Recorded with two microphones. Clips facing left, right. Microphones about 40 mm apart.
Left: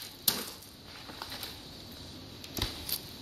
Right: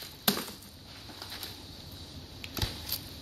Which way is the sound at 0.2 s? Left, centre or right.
Right.